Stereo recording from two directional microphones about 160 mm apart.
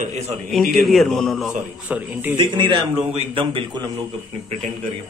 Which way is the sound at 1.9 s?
10° right (ahead or behind).